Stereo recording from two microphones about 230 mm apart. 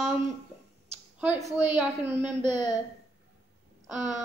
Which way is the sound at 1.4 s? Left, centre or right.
Right.